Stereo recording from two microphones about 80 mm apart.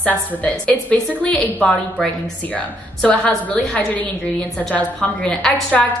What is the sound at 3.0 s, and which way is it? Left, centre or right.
A woman's voice, centre.